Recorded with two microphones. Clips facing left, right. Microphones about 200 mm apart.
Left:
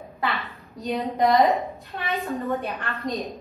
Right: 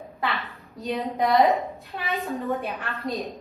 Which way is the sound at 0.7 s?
Centre (ahead or behind).